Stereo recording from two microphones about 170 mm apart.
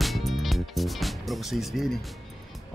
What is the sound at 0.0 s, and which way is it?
Music, centre (ahead or behind).